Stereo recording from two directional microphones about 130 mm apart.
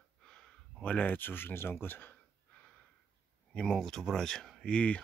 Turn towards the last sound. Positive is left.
turn(degrees=10)  # may be behind; listen again after turning